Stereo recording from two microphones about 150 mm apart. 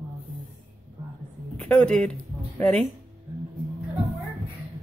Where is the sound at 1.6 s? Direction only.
10° left (ahead or behind).